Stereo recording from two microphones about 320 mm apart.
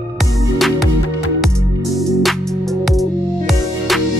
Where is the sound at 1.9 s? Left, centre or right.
Centre.